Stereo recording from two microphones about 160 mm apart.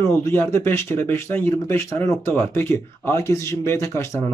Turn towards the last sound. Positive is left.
turn(degrees=20)  # may be behind; listen again after turning